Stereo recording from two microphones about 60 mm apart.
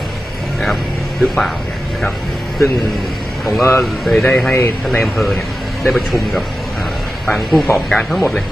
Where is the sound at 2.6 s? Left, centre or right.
Centre.